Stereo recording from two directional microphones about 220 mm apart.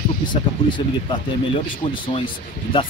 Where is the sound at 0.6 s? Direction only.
20° left (ahead or behind).